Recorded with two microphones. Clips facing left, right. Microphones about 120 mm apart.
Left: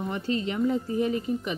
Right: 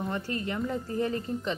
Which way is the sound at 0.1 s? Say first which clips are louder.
Left 3 dB; 20° left (ahead or behind).